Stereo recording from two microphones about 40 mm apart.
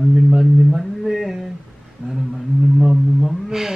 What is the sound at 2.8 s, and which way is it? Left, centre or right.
Speech, centre.